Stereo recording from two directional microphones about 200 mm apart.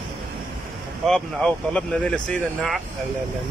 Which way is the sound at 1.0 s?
5° left (ahead or behind).